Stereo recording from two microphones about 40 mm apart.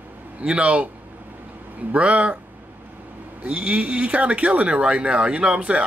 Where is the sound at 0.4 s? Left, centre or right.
Right.